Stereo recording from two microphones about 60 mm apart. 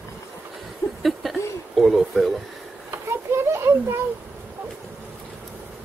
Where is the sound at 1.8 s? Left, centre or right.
Centre.